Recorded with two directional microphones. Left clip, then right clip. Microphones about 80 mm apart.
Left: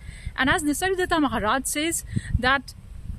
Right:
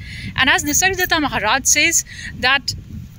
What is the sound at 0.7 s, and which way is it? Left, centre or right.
Speech, left.